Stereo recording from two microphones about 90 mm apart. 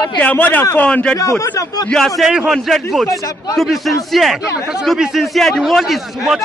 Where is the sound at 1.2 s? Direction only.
35° left (ahead or behind).